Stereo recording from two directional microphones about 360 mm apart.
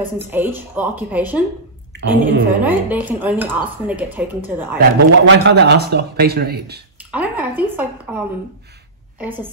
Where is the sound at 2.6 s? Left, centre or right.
Centre.